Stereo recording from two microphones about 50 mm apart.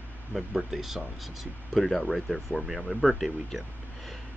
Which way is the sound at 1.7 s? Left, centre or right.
Centre.